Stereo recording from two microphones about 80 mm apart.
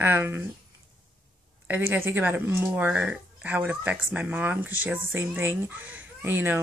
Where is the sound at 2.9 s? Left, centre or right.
Centre.